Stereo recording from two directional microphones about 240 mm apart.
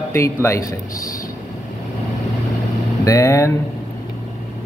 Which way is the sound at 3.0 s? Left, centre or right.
Centre.